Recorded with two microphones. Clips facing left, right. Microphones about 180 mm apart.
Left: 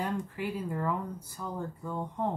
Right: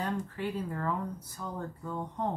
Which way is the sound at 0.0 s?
10° left (ahead or behind).